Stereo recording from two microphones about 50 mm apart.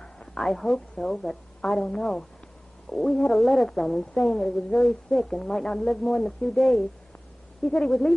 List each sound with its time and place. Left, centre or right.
0.0 s a sound: centre
0.5 s gargling: centre
0.7 s speech: centre
2.9 s gargling: centre
4.2 s speech: centre
4.7 s gargling: centre
5.5 s speech: centre
6.5 s gargling: centre
7.6 s speech: centre